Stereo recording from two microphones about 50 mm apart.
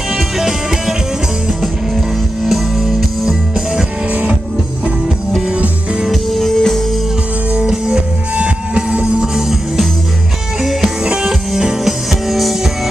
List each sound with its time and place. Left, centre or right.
0.1 s music: centre
2.4 s music: centre
4.1 s music: right
6.3 s music: centre
7.5 s music: centre